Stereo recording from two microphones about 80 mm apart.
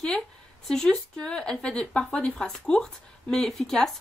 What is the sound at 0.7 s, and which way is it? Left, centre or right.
A woman's voice, centre.